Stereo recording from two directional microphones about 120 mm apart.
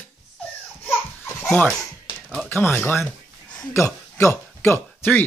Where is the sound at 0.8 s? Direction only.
15° left (ahead or behind).